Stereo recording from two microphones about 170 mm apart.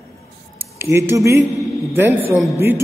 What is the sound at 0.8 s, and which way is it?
Speech, 15° right (ahead or behind).